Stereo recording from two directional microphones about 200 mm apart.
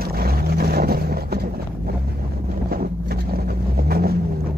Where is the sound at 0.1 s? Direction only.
50° right (ahead or behind).